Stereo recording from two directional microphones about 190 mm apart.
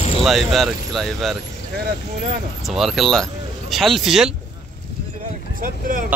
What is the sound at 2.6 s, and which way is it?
Speech, centre (ahead or behind).